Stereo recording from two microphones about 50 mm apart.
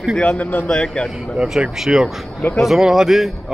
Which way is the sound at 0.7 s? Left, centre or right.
Centre.